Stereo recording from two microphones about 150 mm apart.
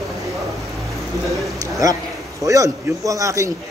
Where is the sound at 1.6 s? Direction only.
20° right (ahead or behind).